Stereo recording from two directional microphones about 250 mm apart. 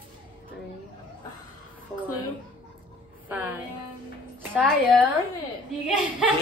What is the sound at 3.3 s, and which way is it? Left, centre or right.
A woman's voice, centre.